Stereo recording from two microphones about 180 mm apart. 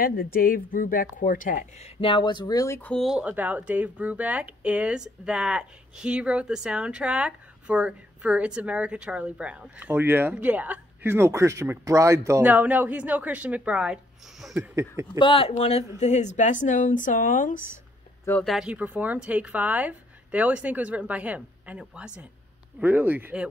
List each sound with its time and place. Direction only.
0.0 s speech: 55° left (ahead or behind)
2.0 s speech: 25° left (ahead or behind); by 13.9 s 5° right (ahead or behind)
14.5 s speech: 15° right (ahead or behind)
15.1 s speech: 30° left (ahead or behind); by 17.6 s 45° left (ahead or behind)
18.4 s speech: centre (ahead or behind)